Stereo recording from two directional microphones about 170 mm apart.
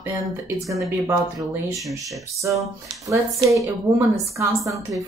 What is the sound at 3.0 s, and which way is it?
Speech, 20° right (ahead or behind).